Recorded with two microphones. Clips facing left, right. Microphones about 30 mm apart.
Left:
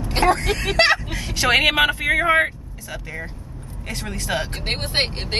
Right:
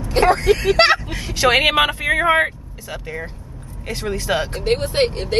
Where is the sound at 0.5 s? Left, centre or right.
Centre.